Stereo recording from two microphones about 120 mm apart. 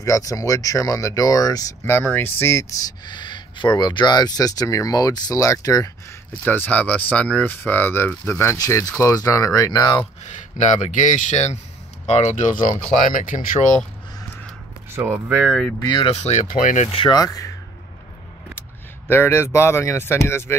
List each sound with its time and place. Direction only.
0.0 s speech: 30° left (ahead or behind)
6.4 s speech: 15° left (ahead or behind); by 10.0 s 35° left (ahead or behind)
10.2 s speech: 75° left (ahead or behind)
13.1 s speech: 90° left
15.0 s speech: 15° right (ahead or behind)
15.8 s speech: 35° left (ahead or behind)
16.1 s speech: 50° left (ahead or behind)
16.3 s speech: 90° left
17.1 s speech: 30° left (ahead or behind)
19.0 s speech: 20° left (ahead or behind)